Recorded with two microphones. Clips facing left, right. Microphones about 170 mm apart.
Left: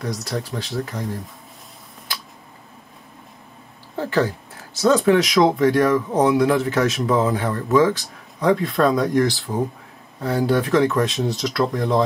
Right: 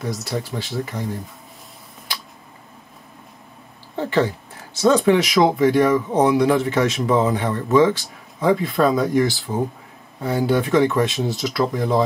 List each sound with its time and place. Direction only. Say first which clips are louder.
0.0 s speech: right 1 dB; centre (ahead or behind)
4.2 s speech: right 1 dB; centre (ahead or behind)